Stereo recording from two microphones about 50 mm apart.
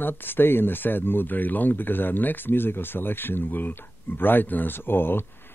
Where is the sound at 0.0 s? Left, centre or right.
Left.